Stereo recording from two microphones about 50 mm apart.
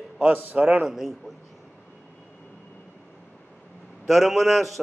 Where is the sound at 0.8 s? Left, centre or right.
Centre.